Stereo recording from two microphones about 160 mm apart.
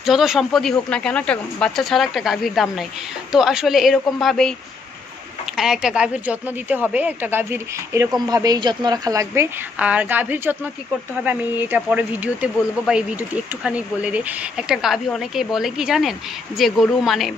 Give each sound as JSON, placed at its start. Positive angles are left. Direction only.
{"t": 0.0, "sound": "speech", "side_deg": 0}
{"t": 5.6, "sound": "a woman's voice", "side_deg": -5}
{"t": 11.7, "sound": "speech", "side_deg": -10}